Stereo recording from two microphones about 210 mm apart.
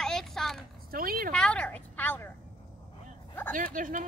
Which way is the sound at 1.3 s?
5° left (ahead or behind).